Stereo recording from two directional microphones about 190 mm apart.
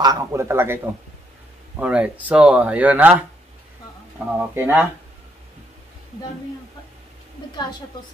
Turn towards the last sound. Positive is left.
turn(degrees=25)  # may be behind; listen again after turning